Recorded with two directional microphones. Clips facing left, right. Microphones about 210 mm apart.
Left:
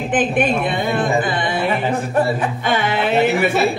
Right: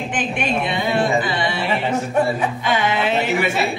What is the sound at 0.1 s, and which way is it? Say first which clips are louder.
A woman's voice: left 7 dB; 55° left (ahead or behind).